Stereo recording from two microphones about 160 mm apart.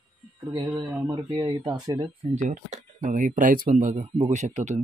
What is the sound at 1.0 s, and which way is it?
Speech, 30° right (ahead or behind).